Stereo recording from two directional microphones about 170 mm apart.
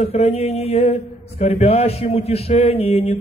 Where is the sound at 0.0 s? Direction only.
40° left (ahead or behind).